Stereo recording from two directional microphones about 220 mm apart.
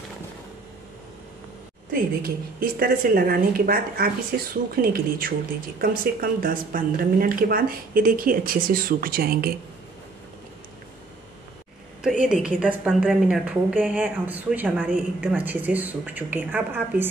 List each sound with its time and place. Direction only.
1.9 s a woman's voice: 45° right (ahead or behind)
12.0 s a woman's voice: 5° right (ahead or behind)